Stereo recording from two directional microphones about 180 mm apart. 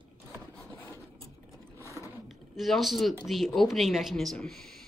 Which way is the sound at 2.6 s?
Centre (ahead or behind).